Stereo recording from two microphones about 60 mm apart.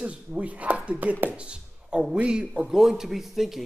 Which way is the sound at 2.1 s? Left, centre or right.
Centre.